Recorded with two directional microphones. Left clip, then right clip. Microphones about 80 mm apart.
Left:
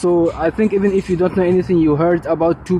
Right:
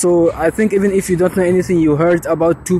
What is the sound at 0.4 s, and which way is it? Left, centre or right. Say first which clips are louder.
Speech: right 2 dB; right.